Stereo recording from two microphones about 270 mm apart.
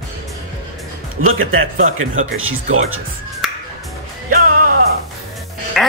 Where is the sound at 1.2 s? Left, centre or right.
Right.